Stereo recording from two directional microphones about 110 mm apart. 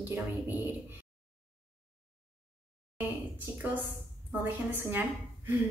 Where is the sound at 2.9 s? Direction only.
20° right (ahead or behind).